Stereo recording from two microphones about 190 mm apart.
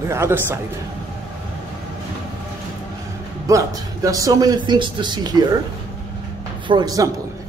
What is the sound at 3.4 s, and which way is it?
Speech, 15° right (ahead or behind).